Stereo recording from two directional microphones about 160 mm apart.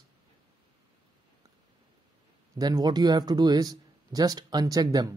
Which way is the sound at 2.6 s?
25° right (ahead or behind).